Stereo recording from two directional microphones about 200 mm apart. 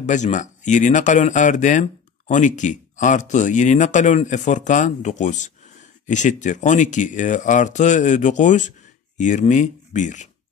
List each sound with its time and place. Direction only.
0.0 s speech: 35° left (ahead or behind)